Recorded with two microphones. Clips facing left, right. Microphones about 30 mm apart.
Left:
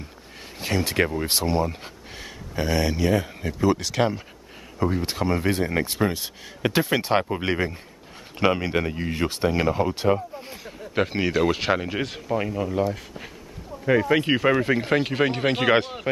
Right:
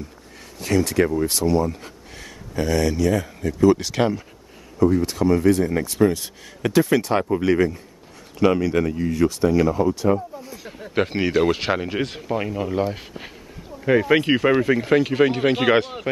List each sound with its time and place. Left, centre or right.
0.6 s speech: left
3.5 s speech: centre
3.8 s speech: centre
4.7 s speech: left
5.9 s speech: centre
11.0 s speech: centre
12.7 s speech: right
14.2 s speech: centre
14.6 s speech: centre